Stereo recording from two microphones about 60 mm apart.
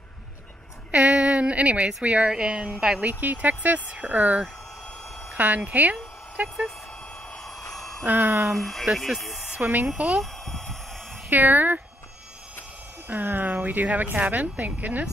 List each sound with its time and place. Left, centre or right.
0.9 s a sound: right
2.0 s speech: centre
3.0 s speech: right
7.3 s vehicle: centre
8.0 s a sound: right
8.5 s speech: centre
9.6 s speech: right
10.4 s a sound: centre
11.2 s speech: right
13.1 s speech: right